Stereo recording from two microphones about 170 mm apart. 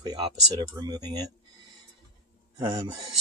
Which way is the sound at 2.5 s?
20° right (ahead or behind).